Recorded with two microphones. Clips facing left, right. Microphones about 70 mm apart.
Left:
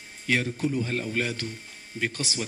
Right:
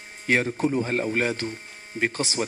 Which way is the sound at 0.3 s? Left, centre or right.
Right.